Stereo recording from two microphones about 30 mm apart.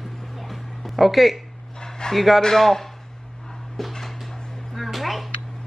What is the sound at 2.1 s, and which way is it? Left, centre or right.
Speech, centre.